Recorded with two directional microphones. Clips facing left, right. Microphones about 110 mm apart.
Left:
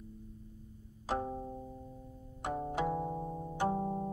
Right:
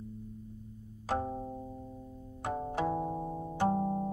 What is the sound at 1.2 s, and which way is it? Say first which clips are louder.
Music: right 2 dB; 10° right (ahead or behind).